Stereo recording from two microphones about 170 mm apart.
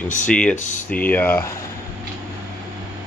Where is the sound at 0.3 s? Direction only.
5° left (ahead or behind).